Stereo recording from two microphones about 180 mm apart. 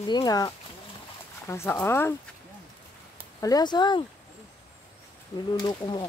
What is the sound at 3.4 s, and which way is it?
Speech, 20° left (ahead or behind).